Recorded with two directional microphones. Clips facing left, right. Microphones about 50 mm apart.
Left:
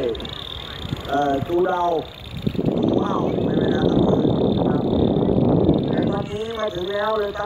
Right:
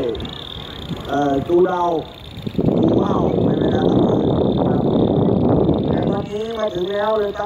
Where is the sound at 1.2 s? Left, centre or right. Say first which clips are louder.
Right 4 dB; centre.